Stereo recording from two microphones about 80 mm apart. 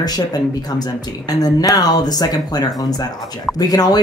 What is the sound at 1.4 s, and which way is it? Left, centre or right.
Speech, left.